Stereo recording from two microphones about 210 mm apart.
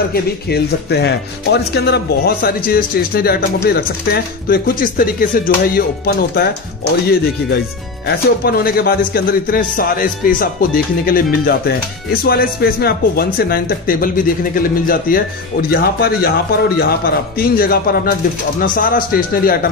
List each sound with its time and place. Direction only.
0.1 s a man's voice: 50° left (ahead or behind)
8.5 s a man's voice: 45° left (ahead or behind)